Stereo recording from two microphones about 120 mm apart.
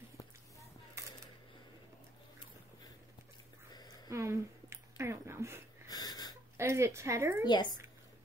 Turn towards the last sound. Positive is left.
turn(degrees=-25)  # may be behind; listen again after turning